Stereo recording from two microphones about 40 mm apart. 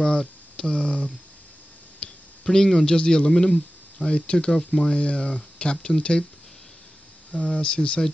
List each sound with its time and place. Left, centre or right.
0.0 s speech: left
2.0 s a sound: centre
3.0 s speech: left
7.3 s speech: left